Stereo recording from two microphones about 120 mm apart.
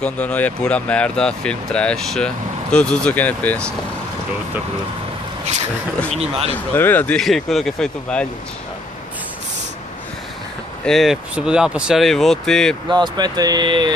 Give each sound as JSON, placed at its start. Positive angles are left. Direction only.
{"t": 0.0, "sound": "speech", "side_deg": 10}
{"t": 6.1, "sound": "speech", "side_deg": -55}
{"t": 6.5, "sound": "speech", "side_deg": 15}
{"t": 7.2, "sound": "speech", "side_deg": 5}
{"t": 10.9, "sound": "speech", "side_deg": 0}
{"t": 12.9, "sound": "speech", "side_deg": -35}